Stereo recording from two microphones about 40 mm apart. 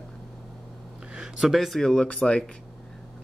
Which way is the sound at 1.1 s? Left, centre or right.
Centre.